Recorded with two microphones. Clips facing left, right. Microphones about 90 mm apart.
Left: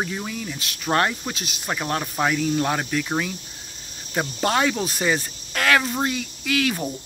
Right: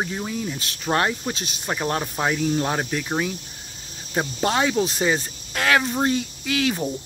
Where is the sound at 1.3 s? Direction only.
35° right (ahead or behind).